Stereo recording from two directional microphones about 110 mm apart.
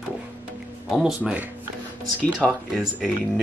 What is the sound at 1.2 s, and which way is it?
Speech, 15° right (ahead or behind).